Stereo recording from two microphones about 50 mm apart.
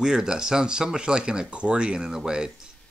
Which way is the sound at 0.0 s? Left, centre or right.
Centre.